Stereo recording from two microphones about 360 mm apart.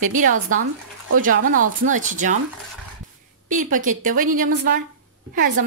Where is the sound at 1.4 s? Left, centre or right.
Right.